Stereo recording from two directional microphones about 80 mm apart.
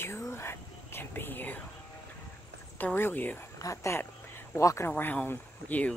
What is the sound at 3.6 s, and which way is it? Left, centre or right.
Speech, left.